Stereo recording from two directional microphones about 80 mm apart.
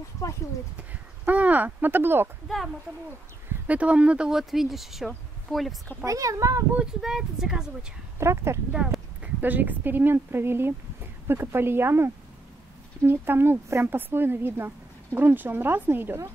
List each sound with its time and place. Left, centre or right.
0.7 s speech: centre
2.4 s speech: centre
3.6 s speech: centre
6.0 s speech: right
7.0 s speech: centre
8.2 s speech: right
9.2 s speech: right